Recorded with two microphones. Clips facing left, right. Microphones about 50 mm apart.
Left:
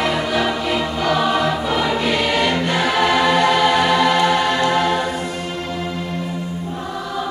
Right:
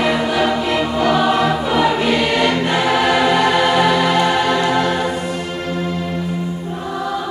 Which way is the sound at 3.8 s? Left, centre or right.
Centre.